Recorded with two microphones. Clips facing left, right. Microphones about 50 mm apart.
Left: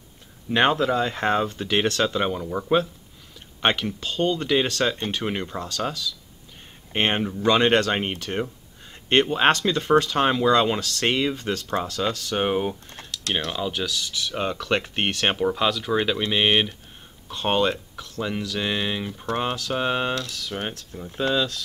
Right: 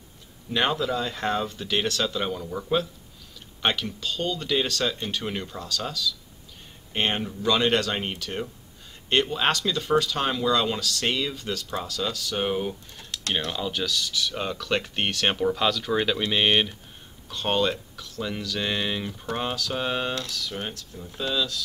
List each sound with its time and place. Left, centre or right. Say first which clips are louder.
0.5 s speech: left 5 dB; left
5.2 s speech: left 4 dB; left
12.4 s speech: left 3 dB; left
13.5 s speech: left 1 dB; centre
17.3 s speech: left 2 dB; left
19.3 s speech: left 3 dB; centre
20.2 s speech: left 2 dB; left